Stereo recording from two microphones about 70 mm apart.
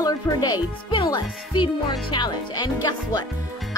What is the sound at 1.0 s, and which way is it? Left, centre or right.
Speech, left.